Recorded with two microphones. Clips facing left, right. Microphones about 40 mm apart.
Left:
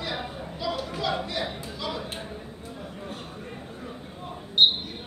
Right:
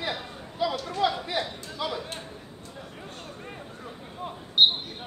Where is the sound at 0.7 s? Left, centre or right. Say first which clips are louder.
Left 1 dB; centre.